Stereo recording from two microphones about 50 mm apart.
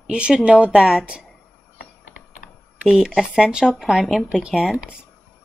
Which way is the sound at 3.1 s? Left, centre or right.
Centre.